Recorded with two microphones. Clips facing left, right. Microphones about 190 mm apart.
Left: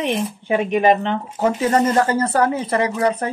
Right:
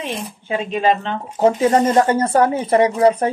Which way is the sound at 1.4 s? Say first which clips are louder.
Right 3 dB; 25° right (ahead or behind).